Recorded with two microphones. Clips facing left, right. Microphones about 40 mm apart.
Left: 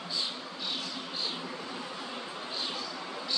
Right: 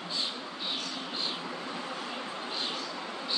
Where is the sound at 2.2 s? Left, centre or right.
Right.